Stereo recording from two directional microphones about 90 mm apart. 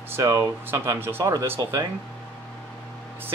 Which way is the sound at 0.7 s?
25° right (ahead or behind).